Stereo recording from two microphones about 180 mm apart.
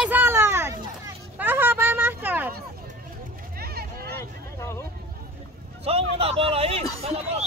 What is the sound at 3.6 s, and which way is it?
Vehicle, 60° right (ahead or behind).